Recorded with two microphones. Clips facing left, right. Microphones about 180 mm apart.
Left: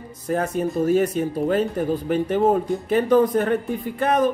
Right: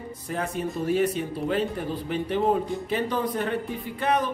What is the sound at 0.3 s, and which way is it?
Speech, 45° left (ahead or behind).